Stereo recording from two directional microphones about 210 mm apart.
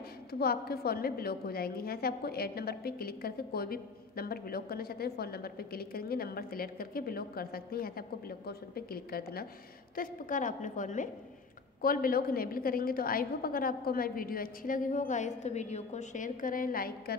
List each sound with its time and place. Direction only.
0.3 s a woman's voice: 45° left (ahead or behind)